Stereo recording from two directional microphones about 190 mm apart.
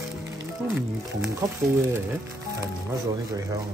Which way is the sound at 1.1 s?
15° right (ahead or behind).